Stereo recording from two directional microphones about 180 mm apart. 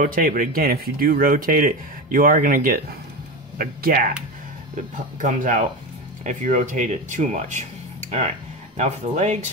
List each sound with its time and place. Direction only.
0.0 s speech: 50° right (ahead or behind)
5.2 s speech: 45° right (ahead or behind)
8.7 s speech: 40° right (ahead or behind)